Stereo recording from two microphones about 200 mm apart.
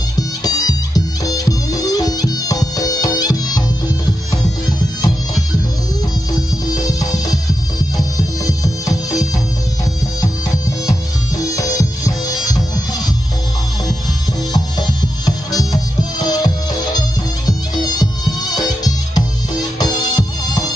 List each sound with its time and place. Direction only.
0.4 s music: 20° left (ahead or behind)
6.7 s music: 20° left (ahead or behind)
10.9 s music: 15° left (ahead or behind)
14.5 s music: 20° left (ahead or behind)